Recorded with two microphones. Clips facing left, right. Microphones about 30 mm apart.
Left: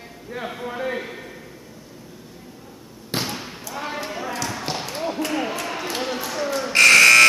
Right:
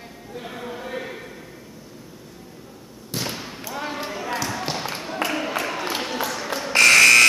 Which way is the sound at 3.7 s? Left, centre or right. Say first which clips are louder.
Even; centre.